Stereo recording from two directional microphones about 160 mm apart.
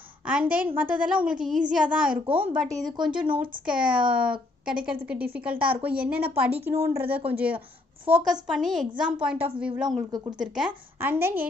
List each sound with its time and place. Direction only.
0.3 s a woman's voice: 10° right (ahead or behind)
11.0 s a woman's voice: 15° right (ahead or behind)